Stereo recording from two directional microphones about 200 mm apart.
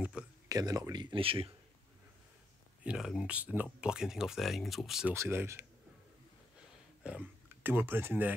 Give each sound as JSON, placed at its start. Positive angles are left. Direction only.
{"t": 0.2, "sound": "a sound", "side_deg": -5}
{"t": 0.5, "sound": "speech", "side_deg": -20}
{"t": 2.8, "sound": "speech", "side_deg": -5}
{"t": 5.1, "sound": "speech", "side_deg": -15}
{"t": 7.0, "sound": "speech", "side_deg": -5}